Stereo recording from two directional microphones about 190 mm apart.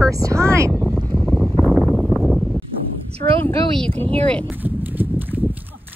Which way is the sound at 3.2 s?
25° left (ahead or behind).